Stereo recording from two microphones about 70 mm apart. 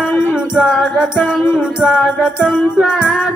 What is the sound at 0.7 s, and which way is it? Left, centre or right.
Music, centre.